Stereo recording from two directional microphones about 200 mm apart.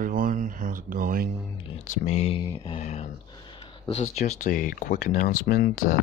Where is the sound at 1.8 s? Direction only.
35° left (ahead or behind).